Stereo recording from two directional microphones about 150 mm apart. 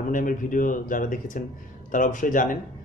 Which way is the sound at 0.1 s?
65° left (ahead or behind).